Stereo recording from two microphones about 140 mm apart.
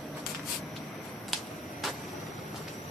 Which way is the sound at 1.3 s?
Centre (ahead or behind).